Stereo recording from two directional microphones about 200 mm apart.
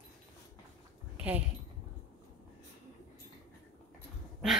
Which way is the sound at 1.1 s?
5° right (ahead or behind).